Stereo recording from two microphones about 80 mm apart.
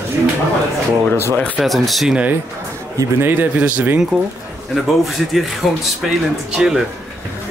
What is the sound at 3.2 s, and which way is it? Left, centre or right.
Speech, right.